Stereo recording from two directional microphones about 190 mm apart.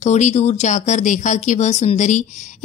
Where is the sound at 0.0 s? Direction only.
35° left (ahead or behind).